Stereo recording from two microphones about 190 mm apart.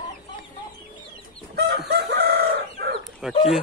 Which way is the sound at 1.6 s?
55° right (ahead or behind).